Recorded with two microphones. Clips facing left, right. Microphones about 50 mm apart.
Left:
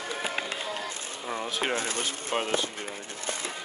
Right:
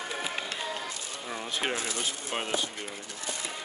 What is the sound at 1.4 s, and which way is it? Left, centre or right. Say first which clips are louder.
Speech: left 1 dB; centre.